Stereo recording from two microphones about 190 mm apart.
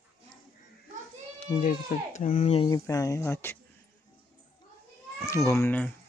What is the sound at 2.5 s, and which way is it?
Speech, 30° left (ahead or behind).